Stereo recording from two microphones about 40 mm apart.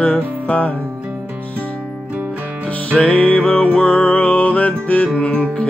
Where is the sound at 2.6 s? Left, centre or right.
Left.